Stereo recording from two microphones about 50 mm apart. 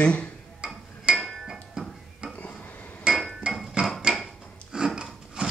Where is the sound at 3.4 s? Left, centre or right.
Right.